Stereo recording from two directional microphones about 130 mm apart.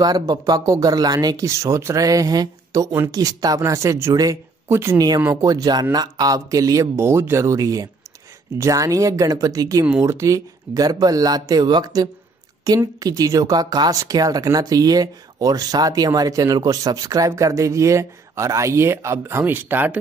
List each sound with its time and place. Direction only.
0.0 s speech: 30° right (ahead or behind)